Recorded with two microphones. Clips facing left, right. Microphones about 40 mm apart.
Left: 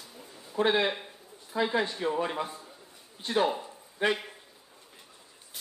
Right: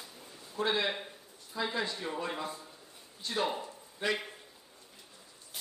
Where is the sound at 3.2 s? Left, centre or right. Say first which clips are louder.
Left 6 dB; left.